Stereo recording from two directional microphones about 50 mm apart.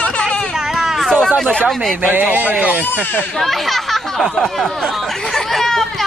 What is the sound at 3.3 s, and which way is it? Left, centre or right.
Speech, centre.